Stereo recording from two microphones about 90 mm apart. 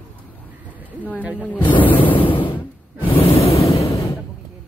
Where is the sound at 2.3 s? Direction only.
70° left (ahead or behind).